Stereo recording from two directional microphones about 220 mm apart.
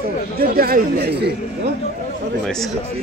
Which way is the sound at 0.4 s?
45° right (ahead or behind).